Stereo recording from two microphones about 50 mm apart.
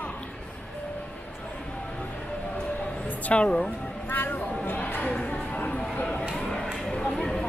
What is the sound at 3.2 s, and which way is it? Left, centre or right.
Speech, left.